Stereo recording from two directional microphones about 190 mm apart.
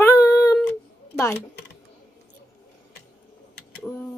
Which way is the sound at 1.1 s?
15° left (ahead or behind).